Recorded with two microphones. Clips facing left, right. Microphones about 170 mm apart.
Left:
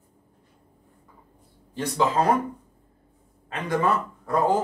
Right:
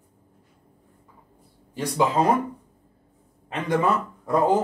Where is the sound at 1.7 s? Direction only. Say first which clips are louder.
Right 1 dB; 15° right (ahead or behind).